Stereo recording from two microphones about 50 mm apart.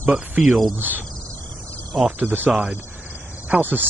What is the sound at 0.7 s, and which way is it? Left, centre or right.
Speech, right.